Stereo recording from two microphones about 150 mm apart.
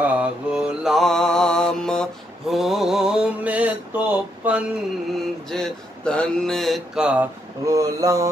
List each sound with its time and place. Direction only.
0.0 s mantra: 10° right (ahead or behind)
5.5 s mantra: 5° left (ahead or behind)
7.6 s mantra: 20° right (ahead or behind)